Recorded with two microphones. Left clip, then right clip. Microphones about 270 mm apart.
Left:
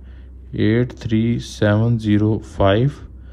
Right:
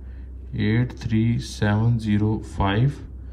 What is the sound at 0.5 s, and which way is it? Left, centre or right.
Speech, left.